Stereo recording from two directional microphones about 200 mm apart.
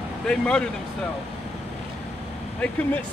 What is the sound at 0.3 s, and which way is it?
Speech, 5° left (ahead or behind).